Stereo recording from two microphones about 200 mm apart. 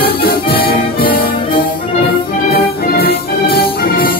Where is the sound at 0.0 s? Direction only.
50° left (ahead or behind).